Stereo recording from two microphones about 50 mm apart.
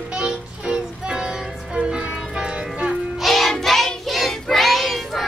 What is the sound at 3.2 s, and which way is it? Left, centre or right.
Child singing, centre.